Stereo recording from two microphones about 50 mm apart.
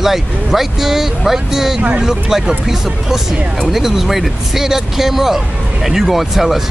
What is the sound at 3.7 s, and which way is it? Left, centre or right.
Speech, centre.